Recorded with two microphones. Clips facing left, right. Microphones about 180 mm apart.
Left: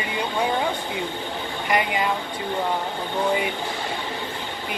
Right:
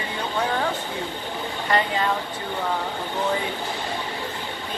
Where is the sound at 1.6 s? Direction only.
15° left (ahead or behind).